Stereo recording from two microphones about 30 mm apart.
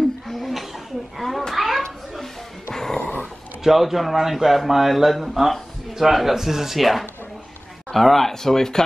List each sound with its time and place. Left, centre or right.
0.3 s a sound: centre
1.5 s children playing: centre
2.7 s dog: centre
3.6 s a man's voice: centre